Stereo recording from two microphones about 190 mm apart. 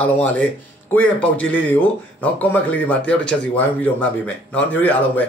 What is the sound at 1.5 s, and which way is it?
Speech, 10° left (ahead or behind).